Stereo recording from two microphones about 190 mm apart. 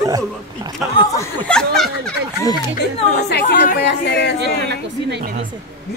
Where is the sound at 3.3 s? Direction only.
60° left (ahead or behind).